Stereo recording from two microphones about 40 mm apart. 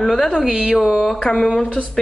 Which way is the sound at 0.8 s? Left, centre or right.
Centre.